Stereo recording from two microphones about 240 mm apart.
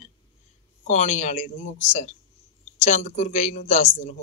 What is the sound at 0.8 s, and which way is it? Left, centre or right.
A man's voice, left.